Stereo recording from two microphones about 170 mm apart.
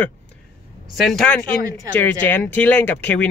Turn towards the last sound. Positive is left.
turn(degrees=10)  # may be behind; listen again after turning